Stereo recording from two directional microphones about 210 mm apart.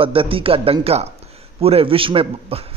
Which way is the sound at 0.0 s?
25° right (ahead or behind).